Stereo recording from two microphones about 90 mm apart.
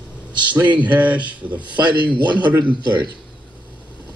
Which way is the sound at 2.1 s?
60° right (ahead or behind).